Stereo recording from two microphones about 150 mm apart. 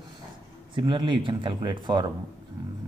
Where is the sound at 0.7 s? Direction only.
30° right (ahead or behind).